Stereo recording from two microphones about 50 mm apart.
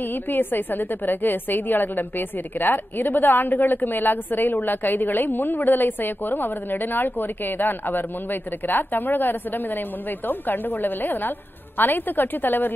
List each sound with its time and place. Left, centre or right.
0.0 s a woman's voice: left